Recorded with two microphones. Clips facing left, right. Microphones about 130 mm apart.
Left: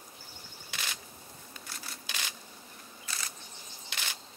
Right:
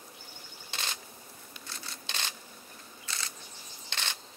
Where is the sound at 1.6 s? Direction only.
25° right (ahead or behind).